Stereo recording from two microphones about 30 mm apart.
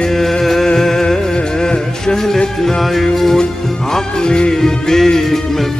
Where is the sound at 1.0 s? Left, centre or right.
Left.